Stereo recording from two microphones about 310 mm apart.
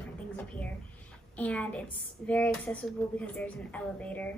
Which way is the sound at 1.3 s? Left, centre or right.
Centre.